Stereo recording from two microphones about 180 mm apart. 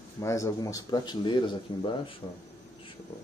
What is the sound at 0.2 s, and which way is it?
Speech, 15° left (ahead or behind).